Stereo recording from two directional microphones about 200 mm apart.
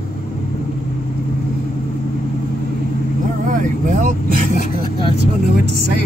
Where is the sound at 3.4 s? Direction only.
40° right (ahead or behind).